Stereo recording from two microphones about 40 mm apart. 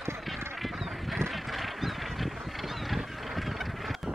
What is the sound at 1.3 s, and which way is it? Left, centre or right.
Goose, centre.